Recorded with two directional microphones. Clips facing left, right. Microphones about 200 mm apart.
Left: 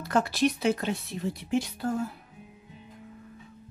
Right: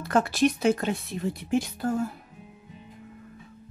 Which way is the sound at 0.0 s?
55° right (ahead or behind).